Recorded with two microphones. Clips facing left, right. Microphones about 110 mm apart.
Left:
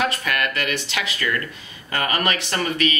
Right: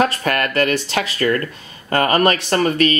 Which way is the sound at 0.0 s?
40° right (ahead or behind).